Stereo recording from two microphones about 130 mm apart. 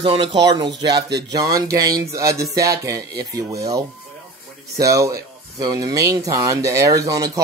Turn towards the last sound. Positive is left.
turn(degrees=-25)  # may be behind; listen again after turning